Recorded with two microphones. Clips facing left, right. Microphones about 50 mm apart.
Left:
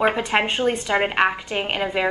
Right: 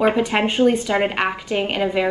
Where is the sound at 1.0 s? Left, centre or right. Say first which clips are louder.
Left 1 dB; centre.